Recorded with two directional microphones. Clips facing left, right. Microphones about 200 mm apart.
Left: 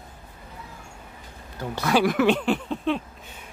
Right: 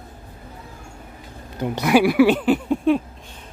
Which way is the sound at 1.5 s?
20° right (ahead or behind).